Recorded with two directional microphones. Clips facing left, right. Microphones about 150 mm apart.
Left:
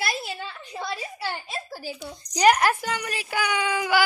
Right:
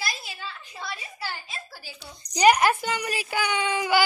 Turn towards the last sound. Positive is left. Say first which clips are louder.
# left 1 dB
turn(degrees=5)  # may be behind; listen again after turning